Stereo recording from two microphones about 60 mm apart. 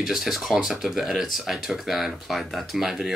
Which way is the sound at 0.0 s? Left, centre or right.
Centre.